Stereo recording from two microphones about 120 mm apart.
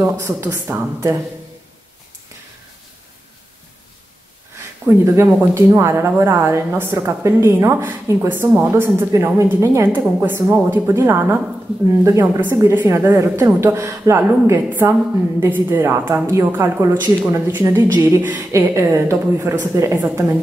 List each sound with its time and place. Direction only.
0.0 s speech: 25° right (ahead or behind)
4.6 s speech: 20° right (ahead or behind)
12.0 s speech: 25° right (ahead or behind)